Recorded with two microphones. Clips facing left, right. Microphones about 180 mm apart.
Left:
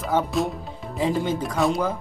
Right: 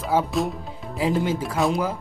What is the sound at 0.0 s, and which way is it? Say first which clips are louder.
Speech: even; centre (ahead or behind).